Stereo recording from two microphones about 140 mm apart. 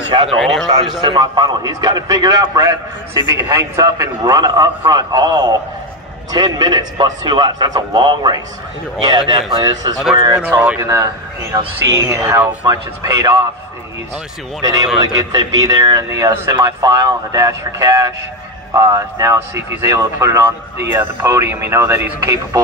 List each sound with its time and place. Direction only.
0.4 s speech: centre (ahead or behind)
1.0 s a man's voice: 30° right (ahead or behind)
10.4 s speech: 10° right (ahead or behind)
10.8 s speech: 25° right (ahead or behind)
12.6 s speech: 25° right (ahead or behind)
14.6 s speech: 25° right (ahead or behind)